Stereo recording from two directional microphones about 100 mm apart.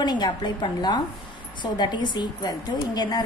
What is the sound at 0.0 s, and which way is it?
A woman's voice, 45° left (ahead or behind).